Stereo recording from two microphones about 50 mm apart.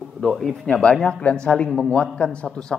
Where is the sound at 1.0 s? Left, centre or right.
Centre.